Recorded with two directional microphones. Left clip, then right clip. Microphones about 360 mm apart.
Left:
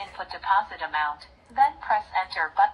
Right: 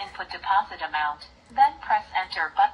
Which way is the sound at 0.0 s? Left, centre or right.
Centre.